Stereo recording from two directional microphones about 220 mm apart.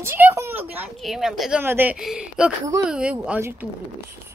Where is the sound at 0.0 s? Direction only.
10° right (ahead or behind).